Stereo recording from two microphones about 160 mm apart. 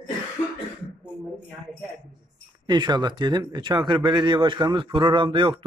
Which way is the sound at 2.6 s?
25° right (ahead or behind).